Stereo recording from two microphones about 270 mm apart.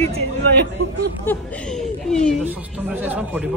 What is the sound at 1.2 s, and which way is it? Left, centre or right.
A woman's voice, centre.